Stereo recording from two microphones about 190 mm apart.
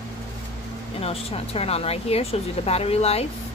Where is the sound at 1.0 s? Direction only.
30° left (ahead or behind).